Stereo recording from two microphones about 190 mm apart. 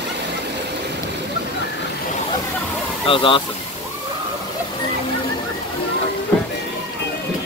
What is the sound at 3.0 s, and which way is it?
Speech, 25° left (ahead or behind).